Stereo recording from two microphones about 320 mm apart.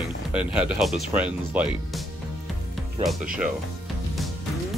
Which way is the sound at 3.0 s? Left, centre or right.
Centre.